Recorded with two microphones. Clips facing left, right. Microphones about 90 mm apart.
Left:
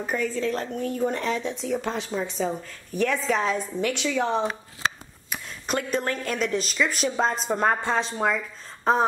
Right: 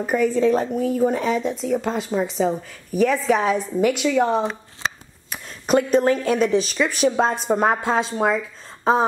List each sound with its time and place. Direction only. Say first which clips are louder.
0.0 s speech: right 8 dB; 10° right (ahead or behind)
5.7 s speech: right 9 dB; 5° right (ahead or behind)